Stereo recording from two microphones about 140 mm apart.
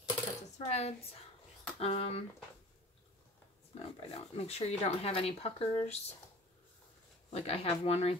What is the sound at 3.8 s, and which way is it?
Speech, 45° left (ahead or behind).